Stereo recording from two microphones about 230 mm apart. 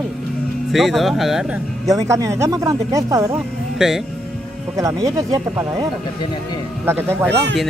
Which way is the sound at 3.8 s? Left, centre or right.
Centre.